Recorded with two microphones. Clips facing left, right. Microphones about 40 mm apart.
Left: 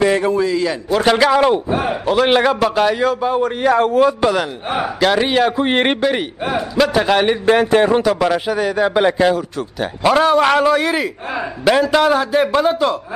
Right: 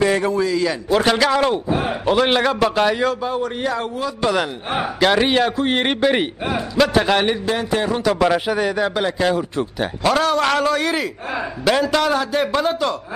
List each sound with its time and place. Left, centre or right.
0.0 s a man's voice: centre
3.2 s a man's voice: centre
3.4 s a man's voice: left
4.2 s a man's voice: centre
5.6 s a man's voice: left
6.8 s a man's voice: centre
7.4 s speech: left
8.0 s a man's voice: centre
8.8 s a man's voice: centre